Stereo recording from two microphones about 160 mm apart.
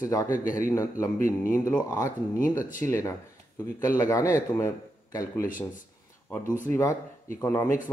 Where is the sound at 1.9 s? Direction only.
20° left (ahead or behind).